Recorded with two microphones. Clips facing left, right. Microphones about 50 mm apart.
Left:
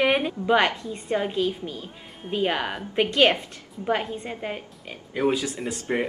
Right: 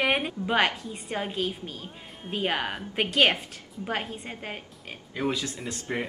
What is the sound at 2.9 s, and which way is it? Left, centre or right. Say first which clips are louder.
Speech: left 3 dB; centre.